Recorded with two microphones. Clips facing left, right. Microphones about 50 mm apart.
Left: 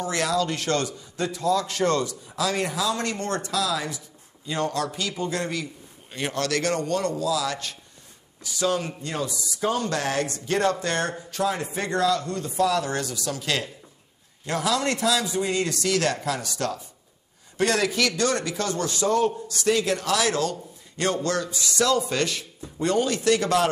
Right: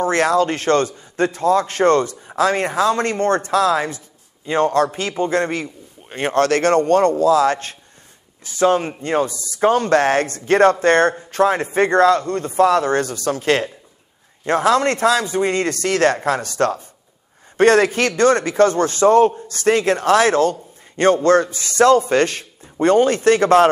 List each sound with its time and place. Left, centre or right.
0.0 s a man's voice: right